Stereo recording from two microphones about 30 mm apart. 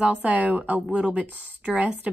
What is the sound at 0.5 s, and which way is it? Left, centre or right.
Speech, right.